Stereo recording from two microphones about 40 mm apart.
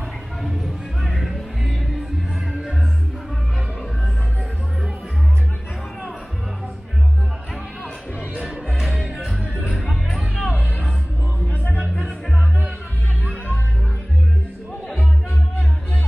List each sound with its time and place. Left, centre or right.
0.4 s a sound: centre
1.2 s music: centre
8.7 s music: centre
10.3 s music: left
11.4 s music: left